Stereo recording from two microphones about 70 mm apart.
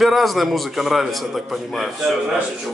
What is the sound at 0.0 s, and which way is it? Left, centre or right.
A man's voice, centre.